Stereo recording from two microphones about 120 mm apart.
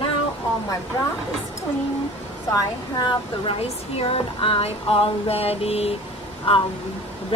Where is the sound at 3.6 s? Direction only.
50° left (ahead or behind).